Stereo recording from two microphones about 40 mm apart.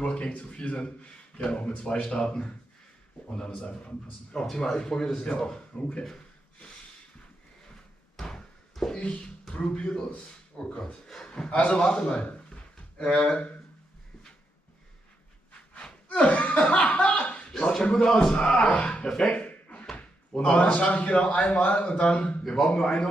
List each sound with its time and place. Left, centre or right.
0.0 s speech: left
8.7 s speech: centre
11.5 s speech: left
11.8 s speech: left
12.5 s a sound: left
15.7 s chuckle: left
17.5 s a sound: left
17.9 s speech: centre
18.3 s speech: left
18.8 s a sound: left
20.0 s speech: left
22.8 s speech: centre